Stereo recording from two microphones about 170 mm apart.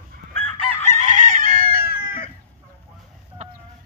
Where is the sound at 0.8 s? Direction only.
45° right (ahead or behind).